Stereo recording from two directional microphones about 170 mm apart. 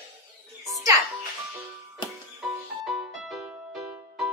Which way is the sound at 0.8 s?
20° right (ahead or behind).